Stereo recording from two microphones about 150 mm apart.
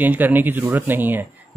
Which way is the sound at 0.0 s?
10° right (ahead or behind).